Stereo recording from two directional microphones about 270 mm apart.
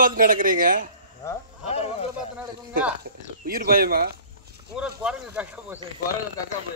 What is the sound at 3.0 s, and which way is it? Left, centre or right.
Speech, right.